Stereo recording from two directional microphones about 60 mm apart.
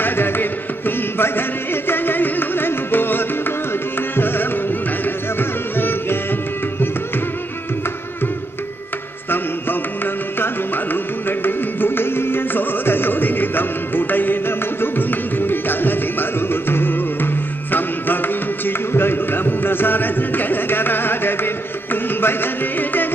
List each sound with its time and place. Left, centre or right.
0.0 s music: left
10.4 s carnatic music: left